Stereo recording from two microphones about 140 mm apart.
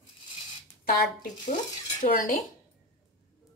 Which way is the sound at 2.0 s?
75° left (ahead or behind).